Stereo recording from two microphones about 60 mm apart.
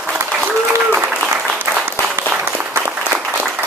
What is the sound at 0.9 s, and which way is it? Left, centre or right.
Applause, centre.